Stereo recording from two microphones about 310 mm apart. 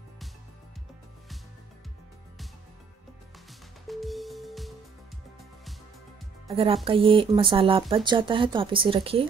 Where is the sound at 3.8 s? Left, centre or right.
Centre.